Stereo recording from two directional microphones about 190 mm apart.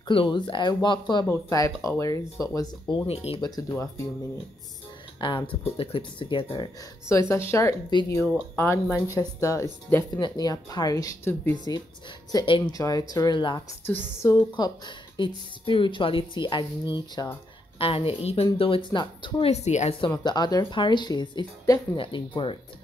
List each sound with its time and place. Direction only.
0.1 s a woman's voice: 25° left (ahead or behind)
5.2 s a woman's voice: 25° left (ahead or behind)
13.8 s a woman's voice: 15° left (ahead or behind); by 20.1 s 35° left (ahead or behind)
20.1 s a woman's voice: 20° left (ahead or behind)